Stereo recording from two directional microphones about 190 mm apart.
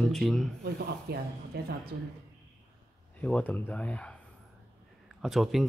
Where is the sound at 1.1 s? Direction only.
55° right (ahead or behind).